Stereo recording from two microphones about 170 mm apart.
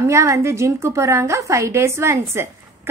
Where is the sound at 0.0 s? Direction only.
15° right (ahead or behind).